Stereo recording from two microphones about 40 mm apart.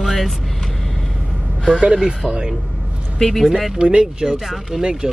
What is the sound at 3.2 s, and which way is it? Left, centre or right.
Speech, centre.